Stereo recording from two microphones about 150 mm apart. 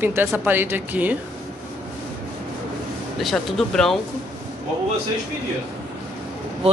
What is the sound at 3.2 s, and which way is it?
Speech, 5° left (ahead or behind).